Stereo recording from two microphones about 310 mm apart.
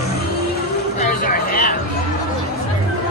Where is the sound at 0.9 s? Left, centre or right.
Left.